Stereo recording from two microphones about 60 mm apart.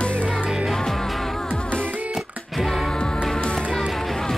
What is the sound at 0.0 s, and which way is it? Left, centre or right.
Music, centre.